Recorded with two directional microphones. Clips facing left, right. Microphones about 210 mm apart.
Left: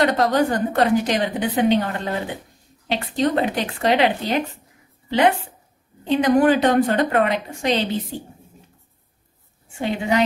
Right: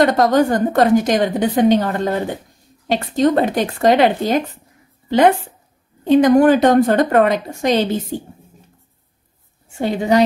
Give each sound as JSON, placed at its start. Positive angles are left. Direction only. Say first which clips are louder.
{"t": 0.0, "sound": "a woman's voice", "louder": "right 4 dB", "side_deg": -45}
{"t": 6.0, "sound": "a woman's voice", "louder": "right 5 dB", "side_deg": -45}
{"t": 9.8, "sound": "a woman's voice", "louder": "right 5 dB", "side_deg": -40}